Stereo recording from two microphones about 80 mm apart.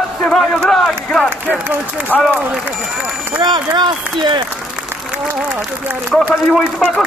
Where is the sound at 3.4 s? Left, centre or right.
Right.